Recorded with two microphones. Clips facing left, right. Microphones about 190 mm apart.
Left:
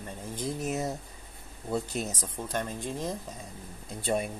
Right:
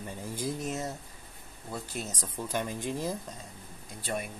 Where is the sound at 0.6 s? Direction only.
15° left (ahead or behind).